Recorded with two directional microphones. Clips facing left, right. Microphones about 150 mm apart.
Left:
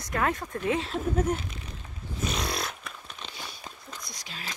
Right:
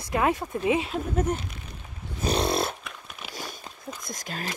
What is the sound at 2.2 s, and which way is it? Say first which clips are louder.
Dog: right 7 dB; 30° right (ahead or behind).